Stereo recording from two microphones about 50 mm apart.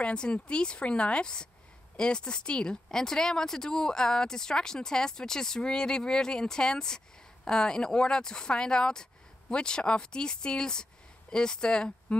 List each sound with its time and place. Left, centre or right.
0.0 s a woman's voice: left